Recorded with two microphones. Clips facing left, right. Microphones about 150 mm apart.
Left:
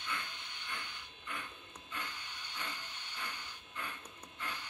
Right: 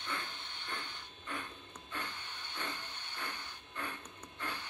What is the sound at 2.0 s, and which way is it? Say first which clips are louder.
Hiss: right 2 dB; 10° left (ahead or behind).